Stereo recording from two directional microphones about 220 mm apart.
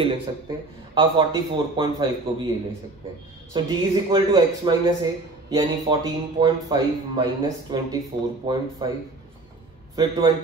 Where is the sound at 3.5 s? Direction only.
20° right (ahead or behind).